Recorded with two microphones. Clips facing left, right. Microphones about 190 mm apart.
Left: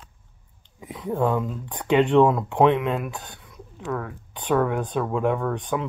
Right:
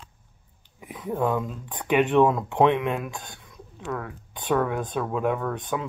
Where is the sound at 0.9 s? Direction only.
10° right (ahead or behind).